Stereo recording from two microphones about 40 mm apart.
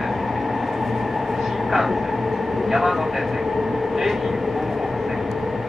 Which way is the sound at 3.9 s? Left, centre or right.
Centre.